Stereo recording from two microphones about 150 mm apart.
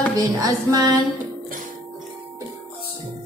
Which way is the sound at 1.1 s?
65° right (ahead or behind).